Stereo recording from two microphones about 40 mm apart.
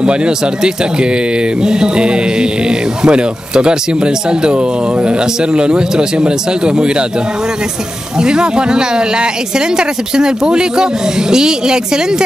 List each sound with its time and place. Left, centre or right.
0.0 s speech: right
1.6 s speech: centre
8.2 s speech: centre